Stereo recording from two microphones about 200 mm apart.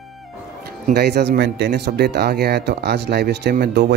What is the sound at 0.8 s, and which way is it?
Speech, 55° right (ahead or behind).